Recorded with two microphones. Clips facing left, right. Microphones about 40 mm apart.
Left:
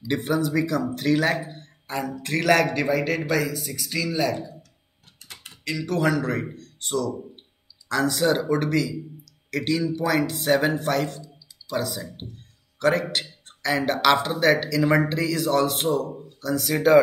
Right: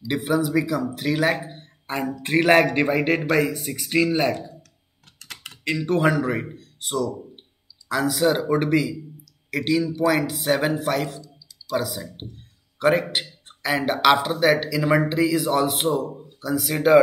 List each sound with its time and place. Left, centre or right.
0.1 s speech: centre
1.5 s a sound: right
2.2 s a man's voice: right
5.2 s computer keyboard: right
5.6 s a man's voice: right; by 8.5 s centre
8.5 s speech: centre
9.5 s a man's voice: centre
12.7 s a sound: centre
13.1 s speech: centre